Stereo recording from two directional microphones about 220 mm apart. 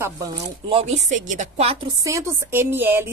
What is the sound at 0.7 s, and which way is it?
Speech, 25° right (ahead or behind).